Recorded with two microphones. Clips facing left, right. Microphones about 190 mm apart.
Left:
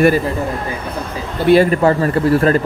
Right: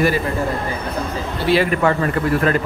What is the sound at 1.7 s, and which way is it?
Speech, 35° left (ahead or behind).